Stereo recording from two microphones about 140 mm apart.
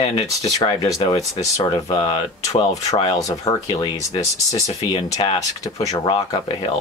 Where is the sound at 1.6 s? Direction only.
35° left (ahead or behind).